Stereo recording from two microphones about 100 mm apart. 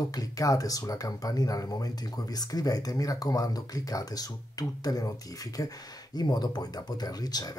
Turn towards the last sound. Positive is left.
turn(degrees=40)  # may be behind; listen again after turning